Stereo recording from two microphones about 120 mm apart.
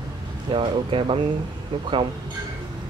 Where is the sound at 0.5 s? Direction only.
45° right (ahead or behind).